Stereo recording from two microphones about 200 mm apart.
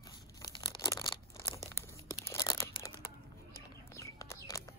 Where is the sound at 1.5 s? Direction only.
15° left (ahead or behind).